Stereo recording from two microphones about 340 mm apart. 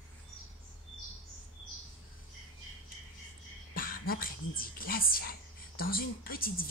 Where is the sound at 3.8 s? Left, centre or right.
Left.